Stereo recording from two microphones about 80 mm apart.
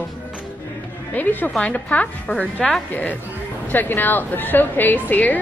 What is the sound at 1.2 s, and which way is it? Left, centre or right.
A woman's voice, left.